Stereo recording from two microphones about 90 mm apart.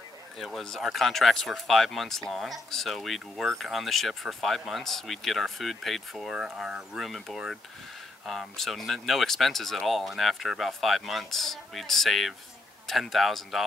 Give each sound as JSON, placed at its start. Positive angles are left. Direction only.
{"t": 0.4, "sound": "speech", "side_deg": 0}